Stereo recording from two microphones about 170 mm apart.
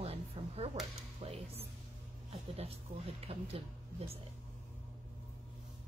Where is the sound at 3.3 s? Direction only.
35° right (ahead or behind).